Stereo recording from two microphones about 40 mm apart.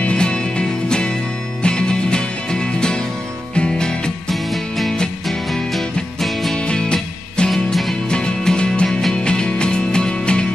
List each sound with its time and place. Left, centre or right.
0.0 s music: left
4.3 s music: centre
6.5 s music: centre
7.4 s music: centre
8.1 s music: left